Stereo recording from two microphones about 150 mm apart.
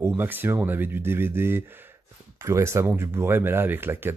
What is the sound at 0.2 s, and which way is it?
Speech, 15° right (ahead or behind).